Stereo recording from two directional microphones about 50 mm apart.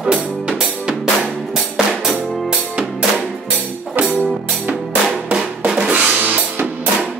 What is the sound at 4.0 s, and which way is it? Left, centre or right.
Music, right.